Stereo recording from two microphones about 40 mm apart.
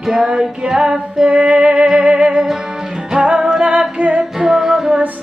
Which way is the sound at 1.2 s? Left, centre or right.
Right.